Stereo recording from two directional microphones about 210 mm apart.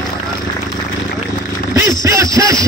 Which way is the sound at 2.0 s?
15° right (ahead or behind).